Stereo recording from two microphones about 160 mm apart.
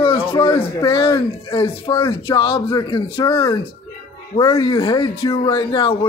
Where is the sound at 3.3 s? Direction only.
20° left (ahead or behind).